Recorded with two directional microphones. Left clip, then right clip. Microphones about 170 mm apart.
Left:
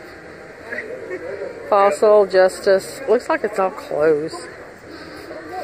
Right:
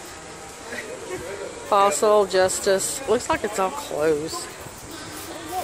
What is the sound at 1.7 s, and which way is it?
A woman's voice, 15° right (ahead or behind).